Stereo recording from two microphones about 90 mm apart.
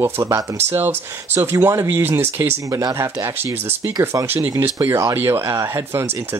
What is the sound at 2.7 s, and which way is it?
Speech, 40° right (ahead or behind).